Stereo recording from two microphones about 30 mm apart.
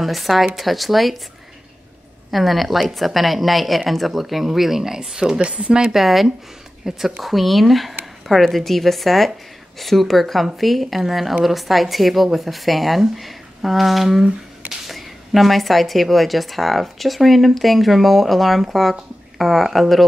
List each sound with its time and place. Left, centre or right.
0.0 s speech: centre
2.3 s speech: centre
6.8 s speech: centre
7.2 s speech: centre